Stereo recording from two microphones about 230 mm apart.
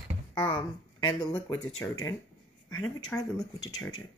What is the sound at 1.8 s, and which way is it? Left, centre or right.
Speech, centre.